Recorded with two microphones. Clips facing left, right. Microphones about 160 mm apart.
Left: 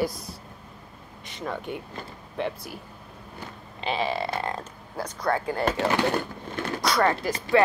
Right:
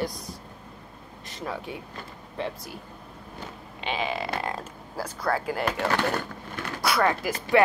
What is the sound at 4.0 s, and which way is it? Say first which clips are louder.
Frog: left 2 dB; 35° left (ahead or behind).